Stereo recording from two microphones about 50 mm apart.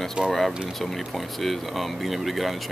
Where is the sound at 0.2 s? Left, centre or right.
Centre.